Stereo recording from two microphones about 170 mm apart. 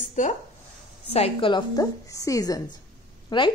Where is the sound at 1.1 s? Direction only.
35° left (ahead or behind).